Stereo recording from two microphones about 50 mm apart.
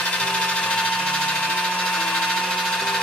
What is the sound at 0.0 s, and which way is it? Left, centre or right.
Vehicle, left.